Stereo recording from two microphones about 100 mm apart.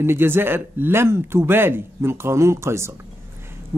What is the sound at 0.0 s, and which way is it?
Speech, 20° right (ahead or behind).